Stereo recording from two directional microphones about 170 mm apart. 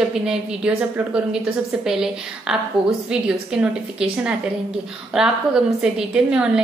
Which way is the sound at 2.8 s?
20° left (ahead or behind).